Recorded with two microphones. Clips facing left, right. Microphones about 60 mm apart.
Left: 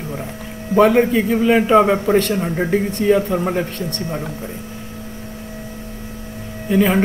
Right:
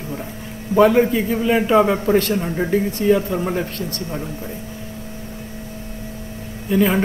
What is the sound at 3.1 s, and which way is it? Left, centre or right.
Speech, centre.